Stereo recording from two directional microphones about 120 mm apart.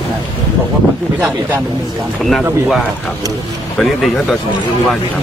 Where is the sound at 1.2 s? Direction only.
15° right (ahead or behind).